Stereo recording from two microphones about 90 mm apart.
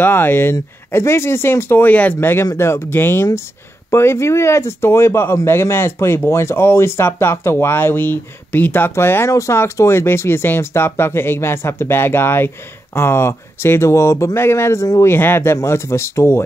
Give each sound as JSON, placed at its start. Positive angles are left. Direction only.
{"t": 0.0, "sound": "speech", "side_deg": 25}